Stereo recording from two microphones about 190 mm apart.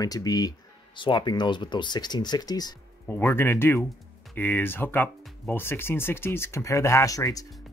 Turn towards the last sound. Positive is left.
turn(degrees=15)  # may be behind; listen again after turning